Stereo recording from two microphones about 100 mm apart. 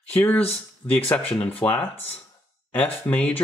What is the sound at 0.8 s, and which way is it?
Speech, 25° left (ahead or behind).